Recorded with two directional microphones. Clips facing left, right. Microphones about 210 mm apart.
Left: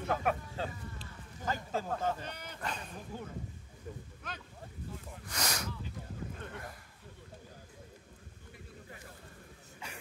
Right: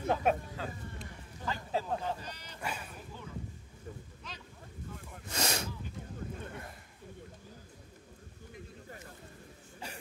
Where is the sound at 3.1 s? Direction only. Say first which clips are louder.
Left 1 dB; 45° left (ahead or behind).